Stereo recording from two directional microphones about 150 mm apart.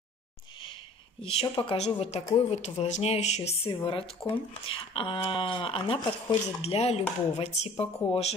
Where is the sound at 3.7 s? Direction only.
35° left (ahead or behind).